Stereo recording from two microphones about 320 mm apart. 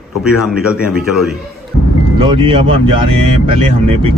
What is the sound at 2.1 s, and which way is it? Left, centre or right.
Speech, centre.